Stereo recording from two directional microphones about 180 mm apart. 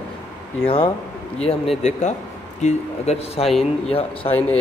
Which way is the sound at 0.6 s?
30° left (ahead or behind).